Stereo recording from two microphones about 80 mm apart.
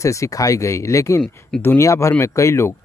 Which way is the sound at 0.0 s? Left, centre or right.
Left.